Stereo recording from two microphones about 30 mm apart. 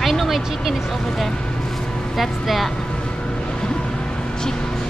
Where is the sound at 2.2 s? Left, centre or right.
Centre.